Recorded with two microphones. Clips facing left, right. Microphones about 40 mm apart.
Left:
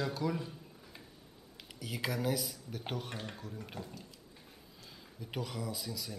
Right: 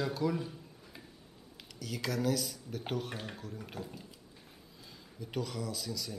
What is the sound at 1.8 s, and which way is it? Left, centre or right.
Speech, centre.